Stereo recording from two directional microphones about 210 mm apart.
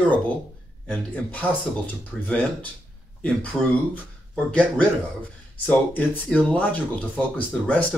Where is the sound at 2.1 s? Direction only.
5° left (ahead or behind).